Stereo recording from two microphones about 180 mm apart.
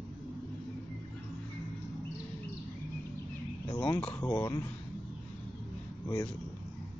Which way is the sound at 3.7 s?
15° left (ahead or behind).